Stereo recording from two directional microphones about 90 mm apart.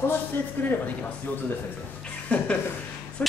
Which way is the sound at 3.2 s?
15° left (ahead or behind).